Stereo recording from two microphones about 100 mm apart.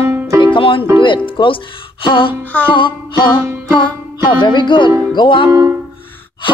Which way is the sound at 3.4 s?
25° right (ahead or behind).